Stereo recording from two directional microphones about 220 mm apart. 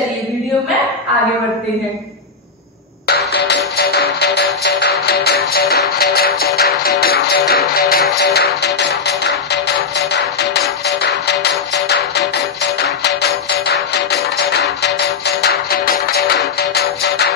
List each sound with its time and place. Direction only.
3.1 s music: 50° left (ahead or behind)